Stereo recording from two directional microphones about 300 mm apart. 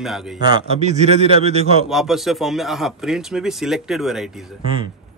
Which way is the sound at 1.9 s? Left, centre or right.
Centre.